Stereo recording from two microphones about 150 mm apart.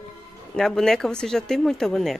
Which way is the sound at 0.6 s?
5° left (ahead or behind).